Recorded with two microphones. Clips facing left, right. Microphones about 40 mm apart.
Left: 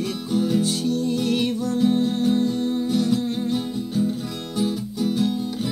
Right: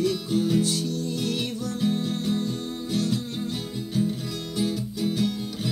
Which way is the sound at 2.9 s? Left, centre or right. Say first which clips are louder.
Left 3 dB; left.